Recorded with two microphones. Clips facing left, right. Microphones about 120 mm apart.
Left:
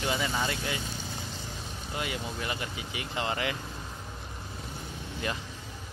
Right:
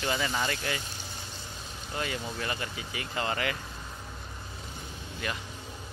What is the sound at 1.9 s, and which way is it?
Speech, 15° left (ahead or behind).